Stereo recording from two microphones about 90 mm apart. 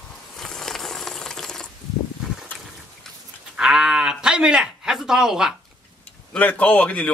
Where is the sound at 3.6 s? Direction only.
5° right (ahead or behind).